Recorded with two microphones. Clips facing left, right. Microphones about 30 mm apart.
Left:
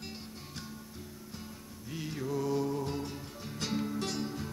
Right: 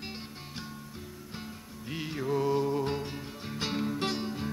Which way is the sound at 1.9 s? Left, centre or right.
Right.